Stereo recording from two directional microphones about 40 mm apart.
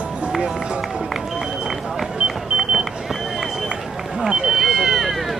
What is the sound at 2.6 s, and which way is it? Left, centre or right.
Vehicle, centre.